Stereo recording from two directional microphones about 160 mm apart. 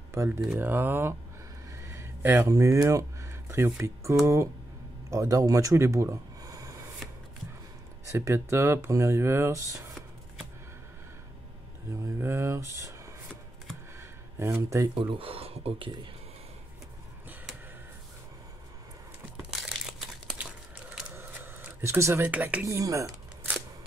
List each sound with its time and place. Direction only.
0.4 s speech: 10° right (ahead or behind)
1.7 s a sound: 20° right (ahead or behind)
5.1 s speech: 20° right (ahead or behind)
8.1 s speech: 15° right (ahead or behind)
12.2 s speech: 15° right (ahead or behind)
13.9 s a sound: 15° right (ahead or behind)
15.0 s speech: 35° right (ahead or behind)
19.3 s crumpling: centre (ahead or behind)
21.1 s a sound: 15° right (ahead or behind)